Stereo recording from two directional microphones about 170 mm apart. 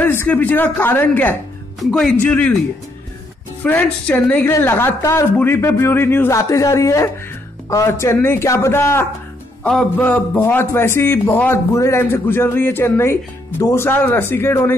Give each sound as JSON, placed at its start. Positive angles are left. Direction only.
{"t": 0.0, "sound": "a man's voice", "side_deg": 10}
{"t": 3.6, "sound": "a man's voice", "side_deg": 10}